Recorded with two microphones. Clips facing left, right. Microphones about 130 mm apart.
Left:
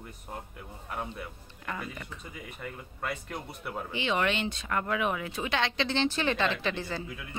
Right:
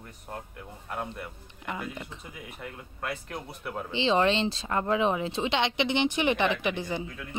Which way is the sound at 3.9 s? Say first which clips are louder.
Right 5 dB; 30° right (ahead or behind).